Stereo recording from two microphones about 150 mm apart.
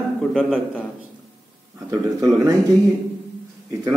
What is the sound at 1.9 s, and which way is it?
Speech, 20° right (ahead or behind).